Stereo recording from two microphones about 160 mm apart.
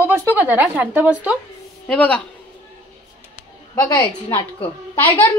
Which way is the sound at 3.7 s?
20° left (ahead or behind).